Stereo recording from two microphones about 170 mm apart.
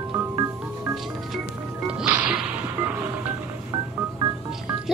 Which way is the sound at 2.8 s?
10° right (ahead or behind).